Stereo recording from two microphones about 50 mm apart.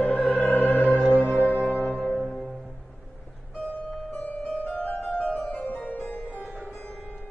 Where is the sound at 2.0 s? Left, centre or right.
Centre.